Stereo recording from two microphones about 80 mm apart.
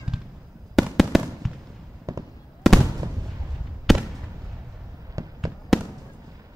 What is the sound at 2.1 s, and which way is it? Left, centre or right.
Fireworks, right.